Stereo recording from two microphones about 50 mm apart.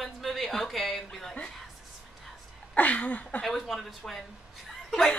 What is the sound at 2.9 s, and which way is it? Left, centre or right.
Speech, left.